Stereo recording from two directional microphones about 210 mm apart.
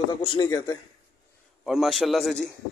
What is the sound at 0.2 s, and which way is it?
Speech, 20° left (ahead or behind).